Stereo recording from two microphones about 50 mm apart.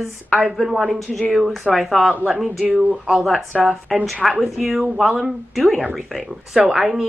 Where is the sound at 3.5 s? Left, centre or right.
Centre.